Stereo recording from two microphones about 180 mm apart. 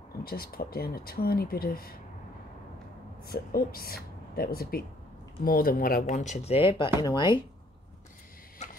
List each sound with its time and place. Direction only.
0.2 s speech: 55° left (ahead or behind)
3.3 s speech: 55° left (ahead or behind)
6.0 s speech: 40° left (ahead or behind)
6.4 s speech: 30° left (ahead or behind)
8.6 s a sound: 40° left (ahead or behind)